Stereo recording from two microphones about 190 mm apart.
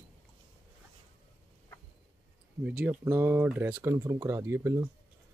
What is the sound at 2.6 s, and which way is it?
Speech, 10° right (ahead or behind).